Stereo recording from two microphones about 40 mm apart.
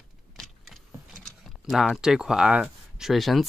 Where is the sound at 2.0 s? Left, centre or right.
Centre.